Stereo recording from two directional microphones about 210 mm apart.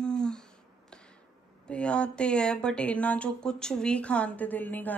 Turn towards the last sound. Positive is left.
turn(degrees=10)  # may be behind; listen again after turning